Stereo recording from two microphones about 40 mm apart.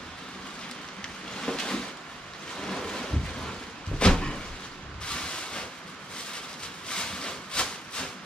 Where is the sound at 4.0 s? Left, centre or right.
Left.